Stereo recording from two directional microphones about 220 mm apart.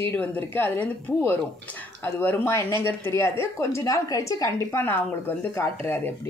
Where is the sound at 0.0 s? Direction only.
5° left (ahead or behind).